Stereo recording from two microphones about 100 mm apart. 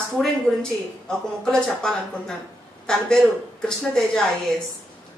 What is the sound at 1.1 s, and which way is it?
A woman's voice, 5° left (ahead or behind).